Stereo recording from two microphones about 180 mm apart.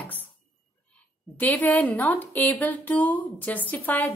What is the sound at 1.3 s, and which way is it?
A woman's voice, 10° left (ahead or behind).